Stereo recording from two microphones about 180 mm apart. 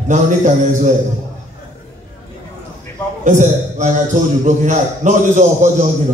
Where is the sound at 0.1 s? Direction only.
40° right (ahead or behind).